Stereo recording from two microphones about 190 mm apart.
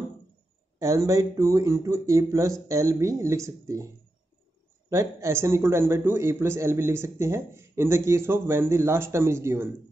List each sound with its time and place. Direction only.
0.7 s a man's voice: 15° right (ahead or behind)